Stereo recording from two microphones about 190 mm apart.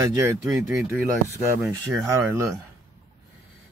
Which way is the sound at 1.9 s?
15° right (ahead or behind).